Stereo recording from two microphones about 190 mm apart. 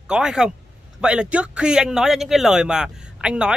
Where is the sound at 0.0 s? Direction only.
5° right (ahead or behind).